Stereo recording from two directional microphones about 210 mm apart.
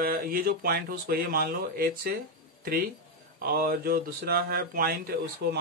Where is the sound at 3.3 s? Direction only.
45° right (ahead or behind).